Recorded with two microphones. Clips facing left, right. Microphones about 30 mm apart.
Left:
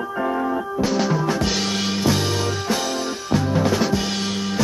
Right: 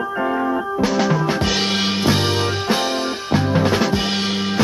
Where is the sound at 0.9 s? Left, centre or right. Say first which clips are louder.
Right 2 dB; centre.